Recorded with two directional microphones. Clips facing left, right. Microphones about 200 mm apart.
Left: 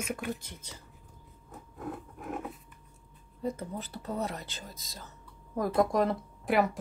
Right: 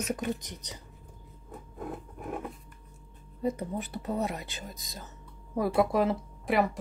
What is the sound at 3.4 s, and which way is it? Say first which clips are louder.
A woman's voice: right 4 dB; 20° right (ahead or behind).